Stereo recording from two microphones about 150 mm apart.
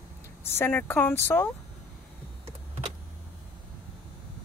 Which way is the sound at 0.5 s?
15° left (ahead or behind).